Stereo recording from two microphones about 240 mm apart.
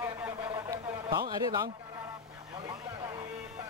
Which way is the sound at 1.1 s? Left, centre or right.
Centre.